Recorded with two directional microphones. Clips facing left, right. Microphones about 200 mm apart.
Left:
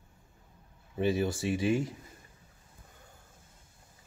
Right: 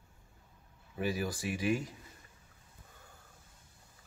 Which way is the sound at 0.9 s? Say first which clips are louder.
Left 6 dB; 25° left (ahead or behind).